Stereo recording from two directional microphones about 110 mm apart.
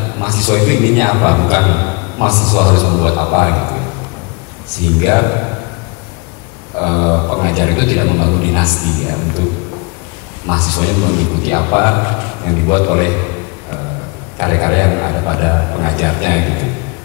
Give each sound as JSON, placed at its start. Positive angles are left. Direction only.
{"t": 0.2, "sound": "a man's voice", "side_deg": 10}
{"t": 5.0, "sound": "a man's voice", "side_deg": 20}
{"t": 6.8, "sound": "a man's voice", "side_deg": 20}
{"t": 10.5, "sound": "a man's voice", "side_deg": 15}
{"t": 14.4, "sound": "a man's voice", "side_deg": 20}